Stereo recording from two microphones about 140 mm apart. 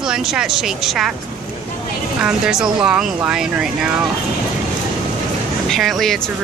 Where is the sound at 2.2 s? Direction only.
5° right (ahead or behind).